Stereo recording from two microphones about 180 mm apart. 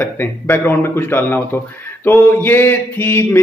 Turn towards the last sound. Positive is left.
turn(degrees=15)  # may be behind; listen again after turning